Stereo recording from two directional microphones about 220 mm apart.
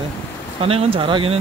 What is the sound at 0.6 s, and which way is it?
Speech, 25° right (ahead or behind).